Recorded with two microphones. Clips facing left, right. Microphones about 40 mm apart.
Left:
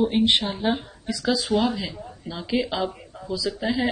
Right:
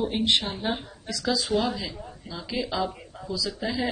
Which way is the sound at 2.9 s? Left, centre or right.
Centre.